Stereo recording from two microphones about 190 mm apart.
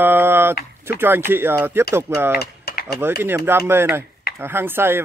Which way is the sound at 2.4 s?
55° left (ahead or behind).